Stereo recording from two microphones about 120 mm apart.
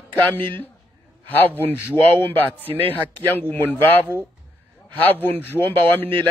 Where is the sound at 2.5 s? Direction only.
15° right (ahead or behind).